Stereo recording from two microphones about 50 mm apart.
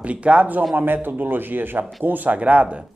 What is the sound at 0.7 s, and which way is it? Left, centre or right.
Speech, right.